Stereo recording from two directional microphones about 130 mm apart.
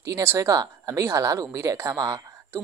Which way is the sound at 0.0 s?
20° right (ahead or behind).